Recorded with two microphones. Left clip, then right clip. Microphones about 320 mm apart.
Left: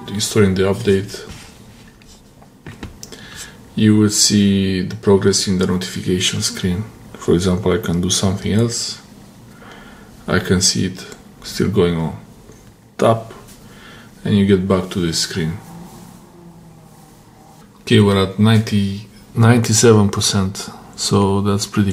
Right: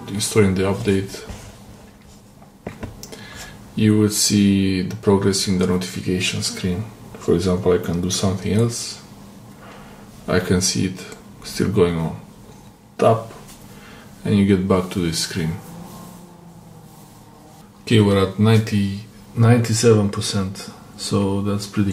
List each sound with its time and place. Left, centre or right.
0.0 s speech: centre
3.7 s speech: centre
10.2 s speech: centre
14.2 s speech: centre
17.8 s speech: centre
19.3 s speech: left